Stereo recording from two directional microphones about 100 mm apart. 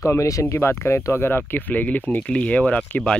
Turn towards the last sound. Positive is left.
turn(degrees=10)  # may be behind; listen again after turning